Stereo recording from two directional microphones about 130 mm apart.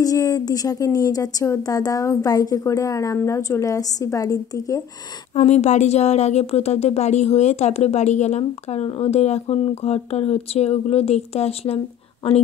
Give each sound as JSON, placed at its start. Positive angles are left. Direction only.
{"t": 0.0, "sound": "a woman's voice", "side_deg": 25}
{"t": 5.3, "sound": "a woman's voice", "side_deg": 60}